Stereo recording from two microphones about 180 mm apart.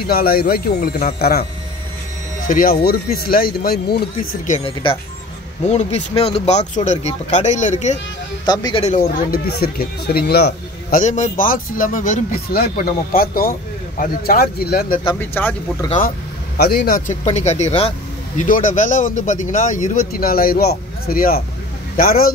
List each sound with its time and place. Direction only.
0.0 s speech: 55° left (ahead or behind)
2.4 s speech: 50° left (ahead or behind)
4.5 s speech: 30° left (ahead or behind)
8.5 s speech: 25° left (ahead or behind)
8.8 s speech: 40° left (ahead or behind)
9.3 s speech: 60° left (ahead or behind)
11.0 s speech: 40° left (ahead or behind); by 15.0 s 60° left (ahead or behind)
15.1 s speech: 10° left (ahead or behind)
16.5 s speech: 55° left (ahead or behind); by 17.9 s 35° left (ahead or behind)
18.4 s speech: 45° left (ahead or behind)